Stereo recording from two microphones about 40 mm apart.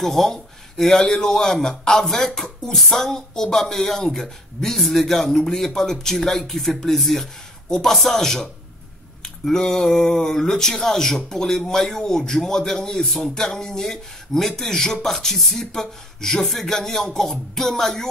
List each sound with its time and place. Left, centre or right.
0.0 s a woman's voice: centre